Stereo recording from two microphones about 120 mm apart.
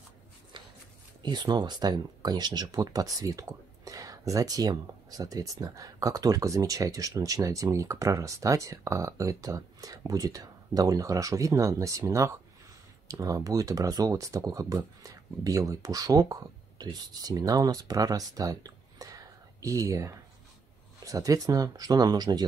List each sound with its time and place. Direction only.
1.2 s speech: 35° right (ahead or behind)